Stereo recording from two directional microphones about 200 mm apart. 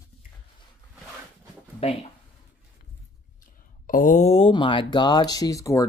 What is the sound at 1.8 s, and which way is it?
Speech, 30° left (ahead or behind).